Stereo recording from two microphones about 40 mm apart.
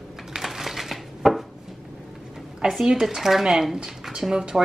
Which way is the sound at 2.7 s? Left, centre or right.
Centre.